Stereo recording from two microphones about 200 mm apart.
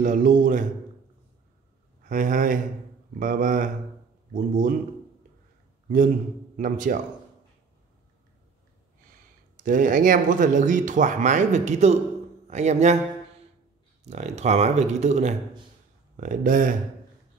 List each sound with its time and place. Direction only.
0.0 s speech: 40° right (ahead or behind)
2.0 s speech: 40° right (ahead or behind)
5.9 s speech: 40° right (ahead or behind)
9.6 s a man's voice: 40° right (ahead or behind)
14.0 s speech: 35° right (ahead or behind)